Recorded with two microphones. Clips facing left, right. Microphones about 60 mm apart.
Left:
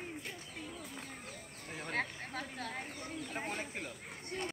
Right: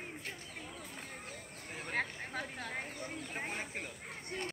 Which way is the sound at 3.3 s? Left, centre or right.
Right.